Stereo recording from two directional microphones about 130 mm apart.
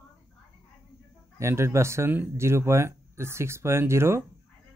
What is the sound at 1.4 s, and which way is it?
Speech, 20° right (ahead or behind).